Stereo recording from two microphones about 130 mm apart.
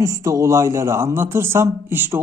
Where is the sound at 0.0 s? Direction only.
25° right (ahead or behind).